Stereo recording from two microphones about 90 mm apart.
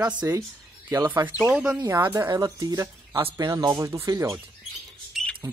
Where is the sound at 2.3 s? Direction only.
45° right (ahead or behind).